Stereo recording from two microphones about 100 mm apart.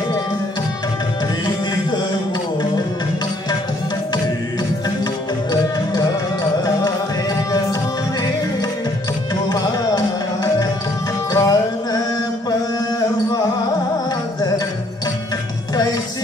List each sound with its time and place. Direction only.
5.5 s music: 40° left (ahead or behind)
9.3 s tabla: 40° left (ahead or behind)
11.3 s music: 40° left (ahead or behind)